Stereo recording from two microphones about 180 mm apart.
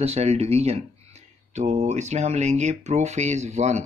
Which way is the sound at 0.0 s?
35° right (ahead or behind).